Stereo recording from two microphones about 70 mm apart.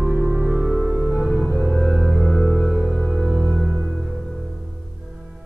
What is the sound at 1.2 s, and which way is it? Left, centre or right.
Music, centre.